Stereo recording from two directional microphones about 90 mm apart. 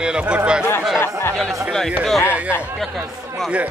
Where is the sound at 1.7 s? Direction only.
Centre (ahead or behind).